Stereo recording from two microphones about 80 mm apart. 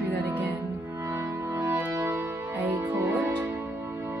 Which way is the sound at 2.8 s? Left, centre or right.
Right.